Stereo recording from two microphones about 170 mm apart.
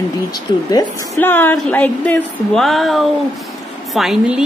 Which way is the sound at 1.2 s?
10° left (ahead or behind).